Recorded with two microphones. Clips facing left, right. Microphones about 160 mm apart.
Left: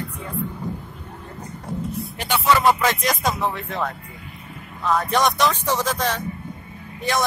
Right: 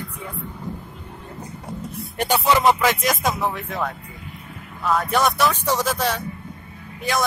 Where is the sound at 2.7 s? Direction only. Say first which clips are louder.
Right 1 dB; centre (ahead or behind).